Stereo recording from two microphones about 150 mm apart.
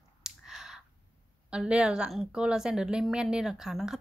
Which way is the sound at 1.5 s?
5° right (ahead or behind).